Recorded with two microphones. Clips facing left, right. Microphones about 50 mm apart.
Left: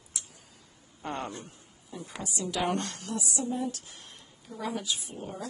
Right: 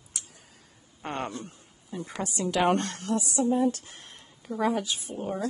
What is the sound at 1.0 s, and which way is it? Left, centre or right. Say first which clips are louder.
Speech: right 2 dB; right.